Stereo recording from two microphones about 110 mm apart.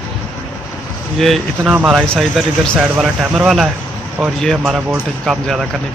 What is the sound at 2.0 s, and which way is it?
Speech, 5° left (ahead or behind).